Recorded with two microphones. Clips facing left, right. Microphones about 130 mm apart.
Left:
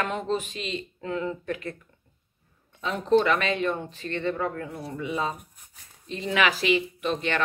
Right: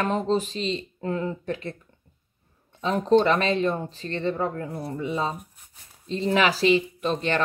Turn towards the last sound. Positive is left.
turn(degrees=-35)  # may be behind; listen again after turning